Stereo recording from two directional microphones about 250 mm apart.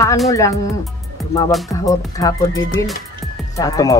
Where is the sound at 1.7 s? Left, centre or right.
Centre.